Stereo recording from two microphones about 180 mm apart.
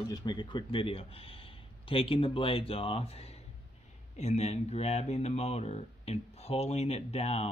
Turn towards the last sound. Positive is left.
turn(degrees=35)  # may be behind; listen again after turning